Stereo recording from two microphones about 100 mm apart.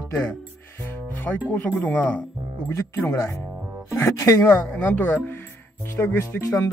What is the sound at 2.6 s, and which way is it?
A woman's voice, 25° left (ahead or behind).